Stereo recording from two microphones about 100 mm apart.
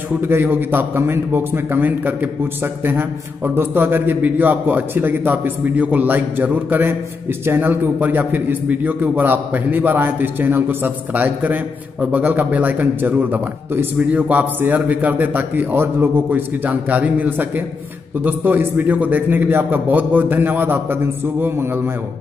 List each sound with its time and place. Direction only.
0.2 s a man's voice: 20° right (ahead or behind)